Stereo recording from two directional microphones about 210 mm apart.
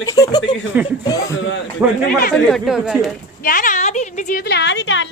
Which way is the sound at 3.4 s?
40° left (ahead or behind).